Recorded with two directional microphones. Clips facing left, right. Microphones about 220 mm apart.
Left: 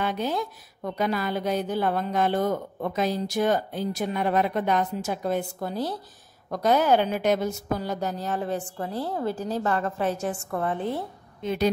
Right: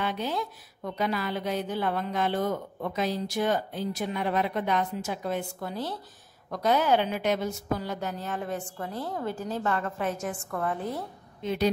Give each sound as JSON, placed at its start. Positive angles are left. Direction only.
{"t": 0.0, "sound": "a woman's voice", "side_deg": 45}
{"t": 11.4, "sound": "a woman's voice", "side_deg": 50}